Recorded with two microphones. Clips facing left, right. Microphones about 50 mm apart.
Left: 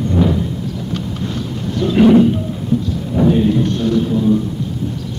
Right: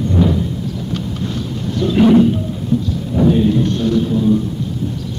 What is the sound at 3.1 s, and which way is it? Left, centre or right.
Music, left.